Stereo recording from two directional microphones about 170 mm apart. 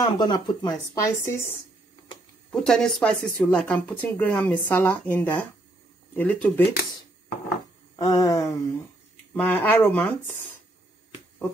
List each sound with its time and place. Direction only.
0.0 s speech: 25° left (ahead or behind)
2.5 s speech: 5° left (ahead or behind)
6.6 s speech: 70° left (ahead or behind)
7.9 s speech: 20° left (ahead or behind)